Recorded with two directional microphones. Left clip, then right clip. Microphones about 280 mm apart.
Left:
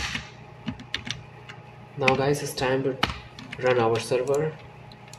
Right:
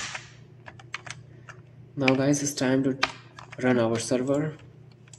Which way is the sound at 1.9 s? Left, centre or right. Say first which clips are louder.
Left 1 dB; right.